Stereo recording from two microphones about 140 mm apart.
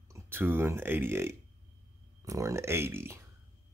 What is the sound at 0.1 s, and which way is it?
Speech, 15° right (ahead or behind).